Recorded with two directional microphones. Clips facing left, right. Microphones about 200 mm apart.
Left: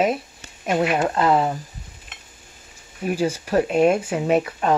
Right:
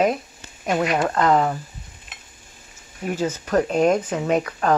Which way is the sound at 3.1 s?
10° left (ahead or behind).